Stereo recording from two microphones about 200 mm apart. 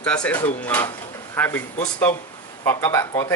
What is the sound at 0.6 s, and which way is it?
Speech, 10° left (ahead or behind).